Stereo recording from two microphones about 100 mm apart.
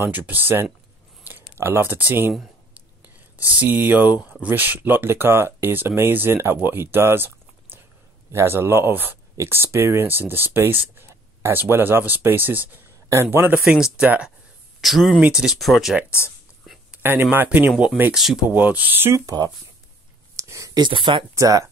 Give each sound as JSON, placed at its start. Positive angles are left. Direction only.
{"t": 0.0, "sound": "speech", "side_deg": -20}
{"t": 3.3, "sound": "speech", "side_deg": -15}
{"t": 13.7, "sound": "speech", "side_deg": -5}
{"t": 14.8, "sound": "speech", "side_deg": 0}
{"t": 16.9, "sound": "speech", "side_deg": -20}
{"t": 18.5, "sound": "speech", "side_deg": -15}
{"t": 20.3, "sound": "a sound", "side_deg": -30}
{"t": 20.8, "sound": "speech", "side_deg": -50}
{"t": 21.4, "sound": "speech", "side_deg": -35}